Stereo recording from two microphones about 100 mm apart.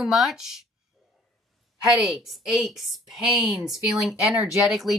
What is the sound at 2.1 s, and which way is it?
Speech, 5° right (ahead or behind).